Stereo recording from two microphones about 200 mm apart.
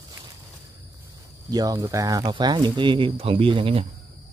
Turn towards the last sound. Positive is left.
turn(degrees=-25)  # may be behind; listen again after turning